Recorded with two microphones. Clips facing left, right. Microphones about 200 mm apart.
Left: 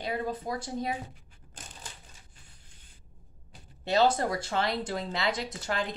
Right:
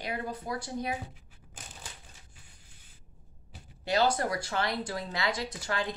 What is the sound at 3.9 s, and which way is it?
Speech, 25° left (ahead or behind).